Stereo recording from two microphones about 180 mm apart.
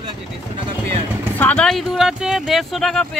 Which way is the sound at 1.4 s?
5° left (ahead or behind).